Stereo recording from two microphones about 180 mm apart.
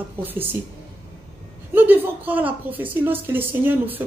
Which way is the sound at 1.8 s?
10° right (ahead or behind).